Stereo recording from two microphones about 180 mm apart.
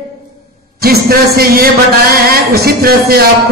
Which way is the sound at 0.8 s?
55° right (ahead or behind).